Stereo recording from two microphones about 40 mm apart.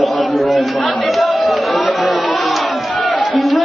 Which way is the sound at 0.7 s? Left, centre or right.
Centre.